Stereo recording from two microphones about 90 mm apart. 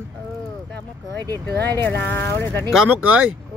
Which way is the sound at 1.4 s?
25° left (ahead or behind).